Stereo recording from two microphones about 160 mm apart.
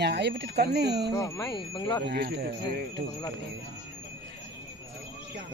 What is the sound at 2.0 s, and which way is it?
Speech, 90° right.